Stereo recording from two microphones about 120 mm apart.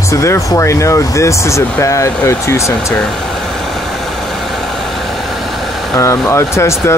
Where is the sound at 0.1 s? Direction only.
25° left (ahead or behind).